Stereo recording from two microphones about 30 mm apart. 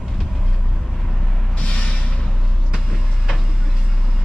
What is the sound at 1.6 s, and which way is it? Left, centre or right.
Music, left.